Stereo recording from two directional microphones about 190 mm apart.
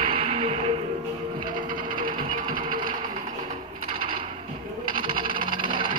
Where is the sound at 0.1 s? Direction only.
30° right (ahead or behind).